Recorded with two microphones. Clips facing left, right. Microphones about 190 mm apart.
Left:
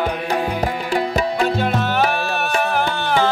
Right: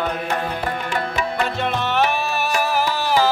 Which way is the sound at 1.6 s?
Centre (ahead or behind).